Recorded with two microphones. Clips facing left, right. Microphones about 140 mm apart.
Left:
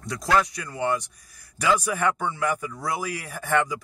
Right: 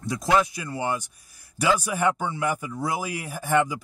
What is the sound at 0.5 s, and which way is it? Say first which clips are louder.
Speech: left 2 dB; 5° right (ahead or behind).